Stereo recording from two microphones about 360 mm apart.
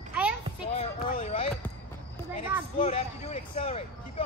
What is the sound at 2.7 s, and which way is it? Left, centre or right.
Speech, centre.